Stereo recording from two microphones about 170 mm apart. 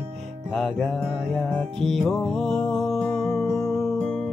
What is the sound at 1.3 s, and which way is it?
Music, centre (ahead or behind).